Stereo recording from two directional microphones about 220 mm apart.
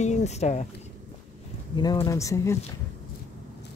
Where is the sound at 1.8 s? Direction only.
15° left (ahead or behind).